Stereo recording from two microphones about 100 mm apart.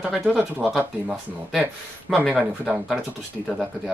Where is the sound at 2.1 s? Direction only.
10° right (ahead or behind).